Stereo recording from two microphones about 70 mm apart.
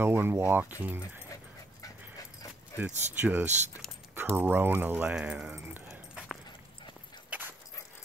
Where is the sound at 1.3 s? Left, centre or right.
Left.